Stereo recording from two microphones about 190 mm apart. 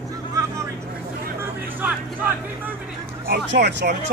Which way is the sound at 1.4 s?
10° right (ahead or behind).